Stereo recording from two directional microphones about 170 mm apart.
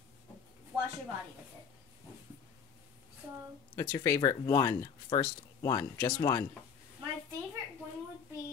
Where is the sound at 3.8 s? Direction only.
15° left (ahead or behind).